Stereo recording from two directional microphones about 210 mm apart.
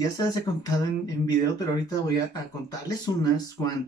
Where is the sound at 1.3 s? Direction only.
20° left (ahead or behind).